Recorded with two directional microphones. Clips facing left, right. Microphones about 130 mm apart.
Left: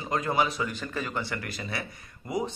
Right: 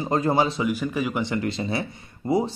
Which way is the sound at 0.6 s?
10° right (ahead or behind).